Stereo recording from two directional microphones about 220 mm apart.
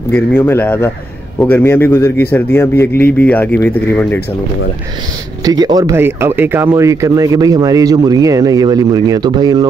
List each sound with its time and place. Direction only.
0.1 s a man's voice: 10° left (ahead or behind)
5.4 s speech: 15° right (ahead or behind)